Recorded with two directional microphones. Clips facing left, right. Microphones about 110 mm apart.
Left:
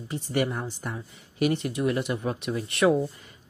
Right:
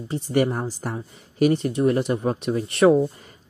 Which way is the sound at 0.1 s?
35° right (ahead or behind).